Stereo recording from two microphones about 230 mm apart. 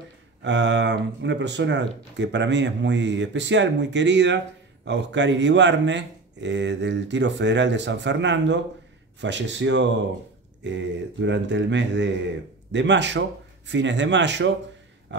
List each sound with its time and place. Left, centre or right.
0.4 s speech: right